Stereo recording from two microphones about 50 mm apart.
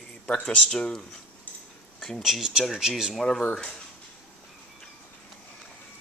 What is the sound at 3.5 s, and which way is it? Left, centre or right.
Speech, centre.